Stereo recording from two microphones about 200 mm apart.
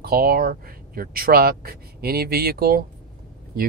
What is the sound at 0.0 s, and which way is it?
Speech, 50° right (ahead or behind).